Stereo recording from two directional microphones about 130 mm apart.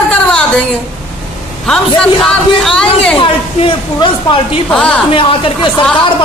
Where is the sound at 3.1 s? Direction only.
45° left (ahead or behind).